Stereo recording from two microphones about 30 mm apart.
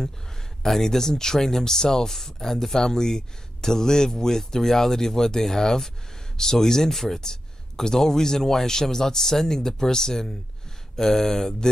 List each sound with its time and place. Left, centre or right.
0.7 s speech: centre
7.2 s speech: centre